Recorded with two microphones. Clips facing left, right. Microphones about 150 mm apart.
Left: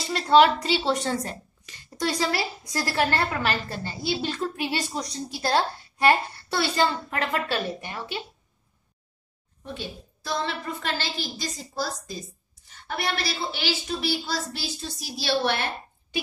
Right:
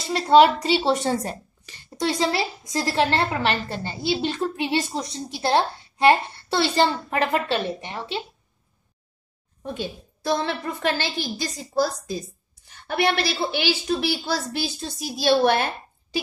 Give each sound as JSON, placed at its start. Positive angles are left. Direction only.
{"t": 0.0, "sound": "a woman's voice", "side_deg": -25}
{"t": 9.8, "sound": "a woman's voice", "side_deg": -55}